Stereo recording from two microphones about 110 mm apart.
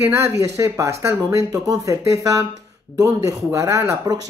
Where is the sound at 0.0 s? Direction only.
25° right (ahead or behind).